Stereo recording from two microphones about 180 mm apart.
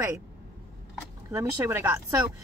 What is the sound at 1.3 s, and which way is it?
Speech, 15° right (ahead or behind).